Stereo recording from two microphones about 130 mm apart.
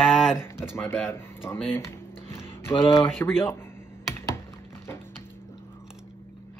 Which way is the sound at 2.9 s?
20° left (ahead or behind).